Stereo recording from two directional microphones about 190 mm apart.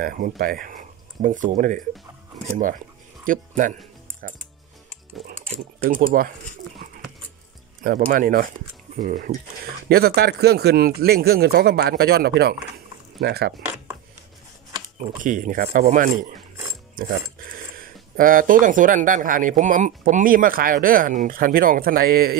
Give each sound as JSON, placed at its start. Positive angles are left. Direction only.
{"t": 0.0, "sound": "speech", "side_deg": -50}
{"t": 5.9, "sound": "speech", "side_deg": -50}
{"t": 7.8, "sound": "speech", "side_deg": -45}
{"t": 15.0, "sound": "speech", "side_deg": -45}
{"t": 17.4, "sound": "a sound", "side_deg": -50}
{"t": 18.1, "sound": "speech", "side_deg": -45}